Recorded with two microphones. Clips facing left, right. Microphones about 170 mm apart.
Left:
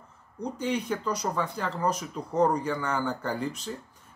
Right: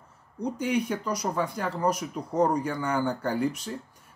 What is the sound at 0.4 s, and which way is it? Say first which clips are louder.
Speech: right 3 dB; 10° right (ahead or behind).